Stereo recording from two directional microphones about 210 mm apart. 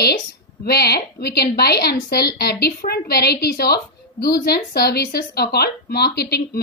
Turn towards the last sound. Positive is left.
turn(degrees=50)  # may be behind; listen again after turning